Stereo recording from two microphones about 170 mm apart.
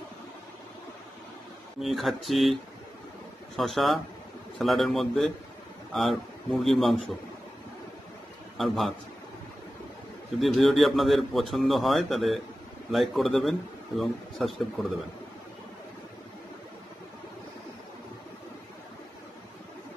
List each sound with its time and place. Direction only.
1.8 s speech: centre (ahead or behind)
8.5 s speech: centre (ahead or behind)
10.4 s speech: centre (ahead or behind)